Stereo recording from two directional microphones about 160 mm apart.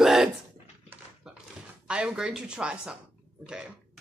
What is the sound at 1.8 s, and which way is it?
Speech, 5° right (ahead or behind).